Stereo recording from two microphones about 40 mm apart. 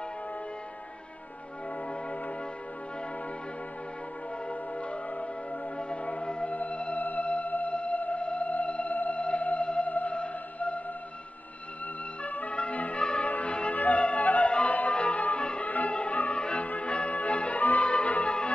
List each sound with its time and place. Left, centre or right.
4.5 s music: left
10.1 s music: left
12.2 s music: left
16.6 s music: left
17.8 s music: left